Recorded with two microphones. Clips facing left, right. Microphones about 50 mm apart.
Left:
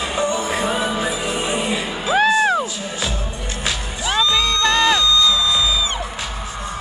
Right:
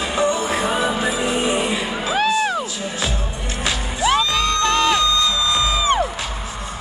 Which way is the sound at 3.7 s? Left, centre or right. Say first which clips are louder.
Right 5 dB; centre.